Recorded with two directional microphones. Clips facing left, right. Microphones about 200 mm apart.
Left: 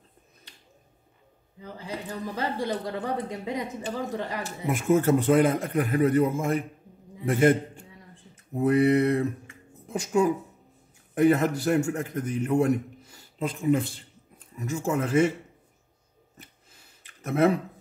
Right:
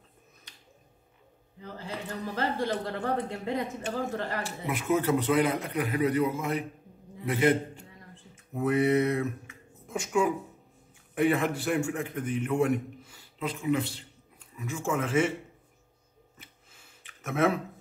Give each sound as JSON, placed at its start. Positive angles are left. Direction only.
{"t": 1.6, "sound": "speech", "side_deg": 15}
{"t": 4.4, "sound": "a man's voice", "side_deg": 45}
{"t": 8.5, "sound": "a man's voice", "side_deg": 35}
{"t": 16.3, "sound": "a sound", "side_deg": 35}